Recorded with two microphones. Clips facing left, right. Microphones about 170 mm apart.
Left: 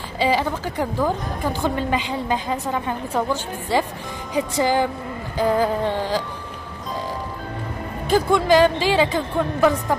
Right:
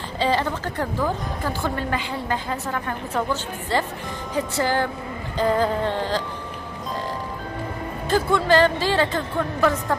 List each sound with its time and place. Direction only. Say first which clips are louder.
0.2 s a woman's voice: left 2 dB; 10° left (ahead or behind)
8.1 s a woman's voice: left 2 dB; 15° left (ahead or behind)